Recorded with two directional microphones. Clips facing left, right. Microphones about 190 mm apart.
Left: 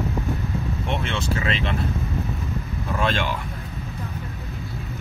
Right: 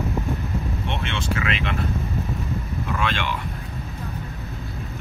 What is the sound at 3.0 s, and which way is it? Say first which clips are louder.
Speech: left 4 dB; 40° left (ahead or behind).